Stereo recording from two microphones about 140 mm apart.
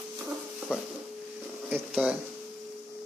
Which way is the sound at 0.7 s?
5° right (ahead or behind).